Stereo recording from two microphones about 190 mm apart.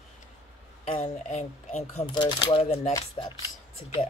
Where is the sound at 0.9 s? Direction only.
40° left (ahead or behind).